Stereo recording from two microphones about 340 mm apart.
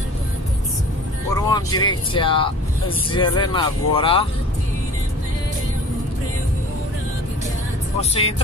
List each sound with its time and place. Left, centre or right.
1.3 s vehicle: centre
1.9 s speech: centre
8.0 s speech: centre